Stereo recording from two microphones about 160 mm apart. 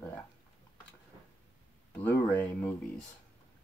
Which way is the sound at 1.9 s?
10° left (ahead or behind).